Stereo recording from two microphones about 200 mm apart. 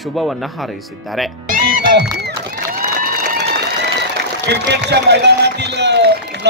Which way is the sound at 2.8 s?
45° right (ahead or behind).